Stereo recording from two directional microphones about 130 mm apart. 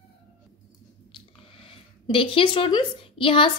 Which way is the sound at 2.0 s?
40° left (ahead or behind).